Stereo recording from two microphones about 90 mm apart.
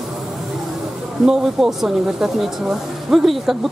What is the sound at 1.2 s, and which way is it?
A woman's voice, 5° right (ahead or behind).